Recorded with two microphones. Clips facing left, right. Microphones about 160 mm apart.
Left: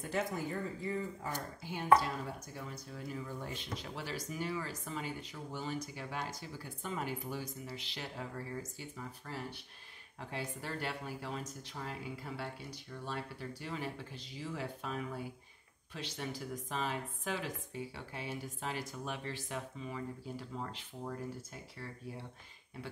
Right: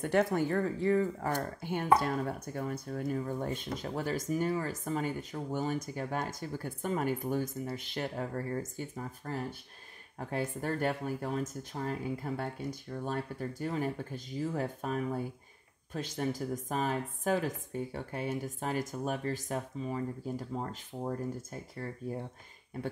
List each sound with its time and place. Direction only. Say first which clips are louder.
0.0 s speech: right 8 dB; 65° right (ahead or behind); by 22.2 s 45° right (ahead or behind)